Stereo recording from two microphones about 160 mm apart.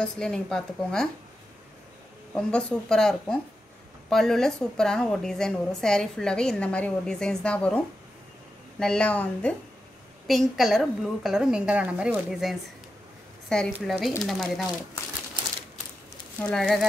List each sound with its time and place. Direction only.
0.0 s a woman's voice: 5° left (ahead or behind)
2.3 s a woman's voice: 5° left (ahead or behind)
16.3 s a woman's voice: 5° left (ahead or behind)